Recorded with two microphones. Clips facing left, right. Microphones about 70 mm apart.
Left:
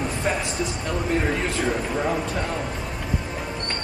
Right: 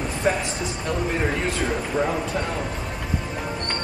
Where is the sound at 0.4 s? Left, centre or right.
Centre.